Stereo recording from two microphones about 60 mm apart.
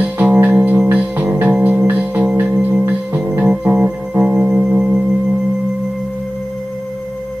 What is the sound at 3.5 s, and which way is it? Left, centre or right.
Music, centre.